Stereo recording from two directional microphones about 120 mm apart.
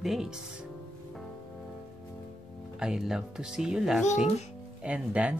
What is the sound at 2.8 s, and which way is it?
Speech, 5° right (ahead or behind).